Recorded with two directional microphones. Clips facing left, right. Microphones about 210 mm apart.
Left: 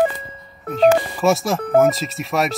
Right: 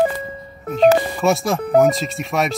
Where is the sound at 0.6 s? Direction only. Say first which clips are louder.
Right 1 dB; centre (ahead or behind).